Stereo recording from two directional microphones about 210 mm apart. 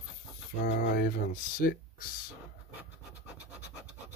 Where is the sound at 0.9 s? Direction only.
45° left (ahead or behind).